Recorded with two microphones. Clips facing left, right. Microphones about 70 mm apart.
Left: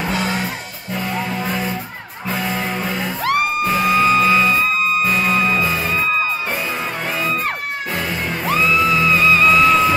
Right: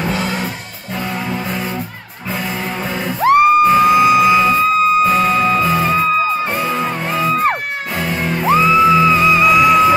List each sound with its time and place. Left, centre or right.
1.3 s vehicle: centre
3.2 s music: right
3.9 s music: centre
5.0 s music: right
8.5 s music: right